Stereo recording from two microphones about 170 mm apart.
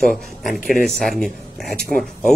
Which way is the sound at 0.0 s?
Centre (ahead or behind).